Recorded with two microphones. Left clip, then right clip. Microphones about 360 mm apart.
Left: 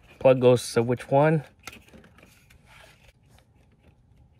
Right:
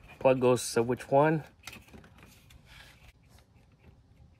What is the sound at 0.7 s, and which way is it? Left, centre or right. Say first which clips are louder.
Speech: left 4 dB; left.